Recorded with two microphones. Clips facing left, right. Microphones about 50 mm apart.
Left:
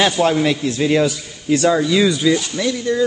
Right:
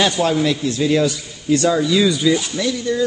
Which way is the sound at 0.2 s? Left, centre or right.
Left.